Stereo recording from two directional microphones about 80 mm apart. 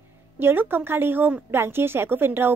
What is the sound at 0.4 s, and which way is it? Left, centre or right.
A woman's voice, right.